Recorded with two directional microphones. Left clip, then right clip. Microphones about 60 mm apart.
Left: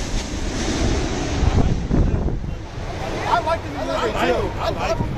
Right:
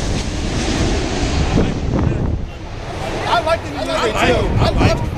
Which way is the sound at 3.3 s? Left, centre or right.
Right.